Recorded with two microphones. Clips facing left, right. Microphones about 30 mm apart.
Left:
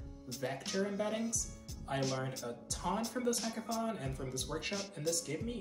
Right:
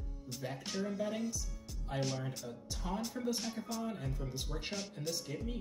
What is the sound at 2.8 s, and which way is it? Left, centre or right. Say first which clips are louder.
Speech: left 4 dB; centre.